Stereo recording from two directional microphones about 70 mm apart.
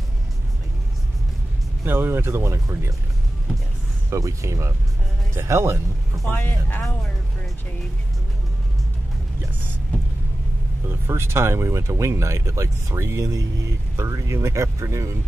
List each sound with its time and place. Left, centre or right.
1.9 s speech: right
4.1 s speech: right
6.2 s speech: left
10.9 s speech: right